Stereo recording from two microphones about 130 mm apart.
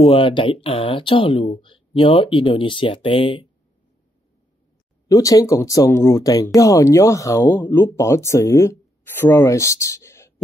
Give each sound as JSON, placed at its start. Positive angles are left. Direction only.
{"t": 0.0, "sound": "speech", "side_deg": 45}
{"t": 5.0, "sound": "speech", "side_deg": 30}